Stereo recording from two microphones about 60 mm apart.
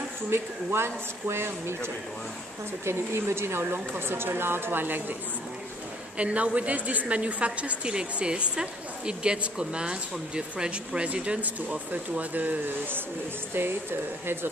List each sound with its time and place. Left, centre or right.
0.3 s a woman's voice: right
6.1 s a woman's voice: right